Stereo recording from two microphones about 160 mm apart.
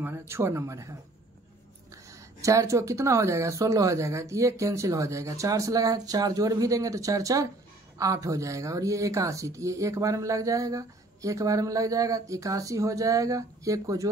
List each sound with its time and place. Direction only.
0.3 s speech: 20° right (ahead or behind)
2.4 s speech: 20° right (ahead or behind)